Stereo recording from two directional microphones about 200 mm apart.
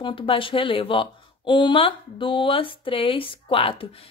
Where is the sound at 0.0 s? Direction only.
25° left (ahead or behind).